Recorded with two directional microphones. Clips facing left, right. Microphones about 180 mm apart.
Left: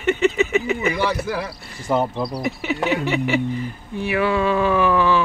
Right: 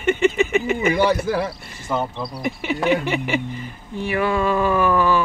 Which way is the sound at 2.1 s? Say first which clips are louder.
Left 2 dB; centre (ahead or behind).